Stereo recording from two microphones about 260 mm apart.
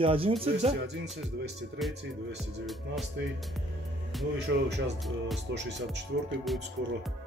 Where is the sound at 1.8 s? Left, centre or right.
Centre.